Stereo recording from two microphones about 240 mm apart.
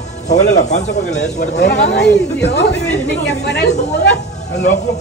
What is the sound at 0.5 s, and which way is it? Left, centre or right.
Speech, left.